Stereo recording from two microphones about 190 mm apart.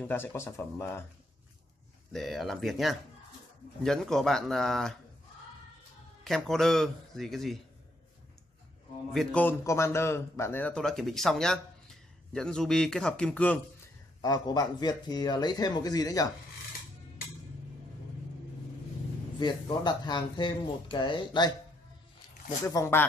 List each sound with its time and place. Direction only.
0.0 s speech: 10° left (ahead or behind)
2.1 s a man's voice: centre (ahead or behind)
6.2 s a man's voice: centre (ahead or behind)
9.1 s a man's voice: 5° left (ahead or behind)
14.2 s speech: 20° left (ahead or behind)
19.4 s speech: 25° left (ahead or behind)
22.7 s speech: 15° left (ahead or behind)